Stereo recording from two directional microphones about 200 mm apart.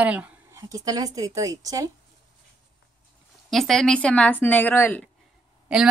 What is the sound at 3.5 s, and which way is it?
Speech, centre (ahead or behind).